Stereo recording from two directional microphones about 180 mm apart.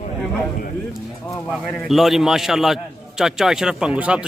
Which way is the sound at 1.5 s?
Centre (ahead or behind).